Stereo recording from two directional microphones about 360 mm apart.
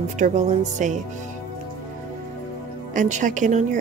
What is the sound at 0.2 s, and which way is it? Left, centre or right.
Speech, right.